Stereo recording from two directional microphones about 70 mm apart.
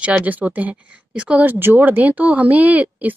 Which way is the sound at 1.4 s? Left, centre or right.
Right.